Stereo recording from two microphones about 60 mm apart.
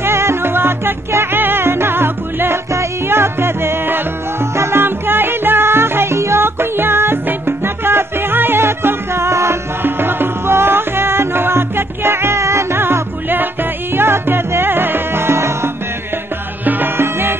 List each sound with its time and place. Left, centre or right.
0.0 s music: right
2.7 s music: right
9.8 s music: right
16.6 s music: right